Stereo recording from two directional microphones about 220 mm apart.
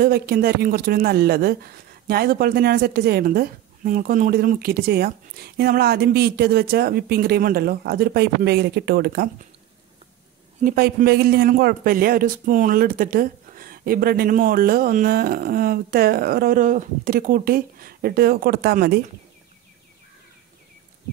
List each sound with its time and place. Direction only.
0.0 s speech: 45° right (ahead or behind)
10.6 s speech: 40° right (ahead or behind)